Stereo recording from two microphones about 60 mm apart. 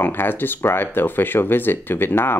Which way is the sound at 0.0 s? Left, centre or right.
Left.